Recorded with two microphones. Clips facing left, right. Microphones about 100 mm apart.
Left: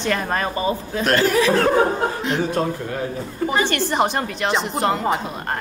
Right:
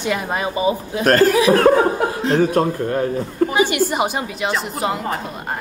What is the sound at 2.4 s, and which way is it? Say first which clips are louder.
Speech: right 4 dB; 50° right (ahead or behind).